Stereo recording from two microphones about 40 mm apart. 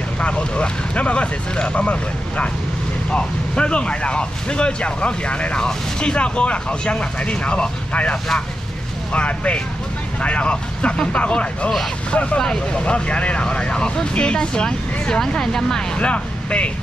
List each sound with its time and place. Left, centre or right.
0.2 s speech: left
12.4 s speech: centre
12.8 s speech: left; by 16.0 s centre
16.0 s speech: left